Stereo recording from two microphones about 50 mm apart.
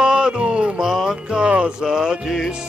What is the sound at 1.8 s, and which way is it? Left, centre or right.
Music, centre.